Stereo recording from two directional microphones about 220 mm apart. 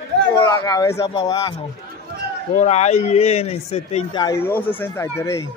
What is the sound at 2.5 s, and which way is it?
A man's voice, 30° left (ahead or behind).